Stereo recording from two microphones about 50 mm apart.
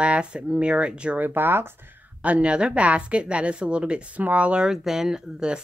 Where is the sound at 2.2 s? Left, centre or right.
Right.